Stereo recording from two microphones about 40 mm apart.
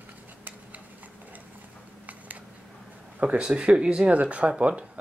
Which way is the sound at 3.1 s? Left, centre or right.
Right.